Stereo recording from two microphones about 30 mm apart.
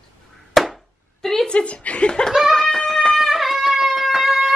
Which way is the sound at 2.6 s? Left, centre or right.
Left.